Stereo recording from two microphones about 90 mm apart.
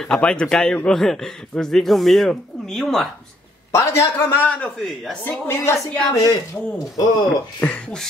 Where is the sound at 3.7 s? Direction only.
30° left (ahead or behind).